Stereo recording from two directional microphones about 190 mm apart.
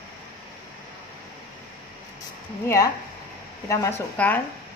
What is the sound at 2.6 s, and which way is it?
A woman's voice, 15° left (ahead or behind).